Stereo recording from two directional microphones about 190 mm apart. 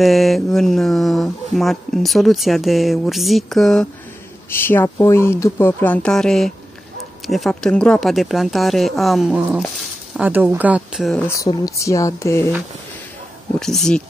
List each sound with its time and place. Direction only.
0.0 s speech: centre (ahead or behind)
11.2 s speech: 15° left (ahead or behind)
13.6 s speech: centre (ahead or behind)